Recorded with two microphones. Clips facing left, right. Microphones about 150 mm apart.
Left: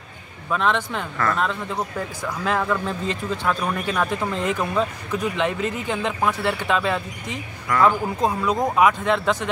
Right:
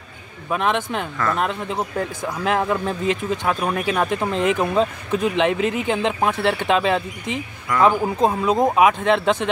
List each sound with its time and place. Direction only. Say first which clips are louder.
0.5 s speech: right 1 dB; 15° right (ahead or behind)